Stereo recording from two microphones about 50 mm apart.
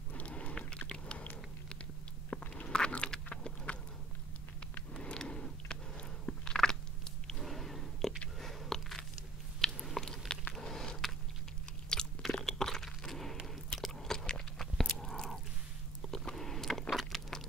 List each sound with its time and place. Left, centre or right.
0.1 s biting: left
4.9 s biting: centre
6.4 s biting: centre
7.4 s a sound: centre
8.4 s biting: centre
12.4 s crunch: centre
13.7 s chewing: centre
14.9 s a sound: centre